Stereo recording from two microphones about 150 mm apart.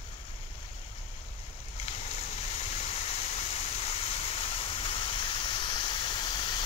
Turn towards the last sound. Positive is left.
turn(degrees=35)  # may be behind; listen again after turning